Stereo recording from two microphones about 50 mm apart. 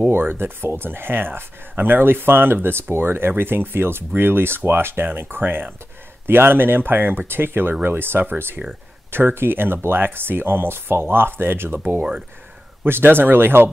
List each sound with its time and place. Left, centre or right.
0.1 s speech: right
12.0 s speech: centre
12.8 s speech: right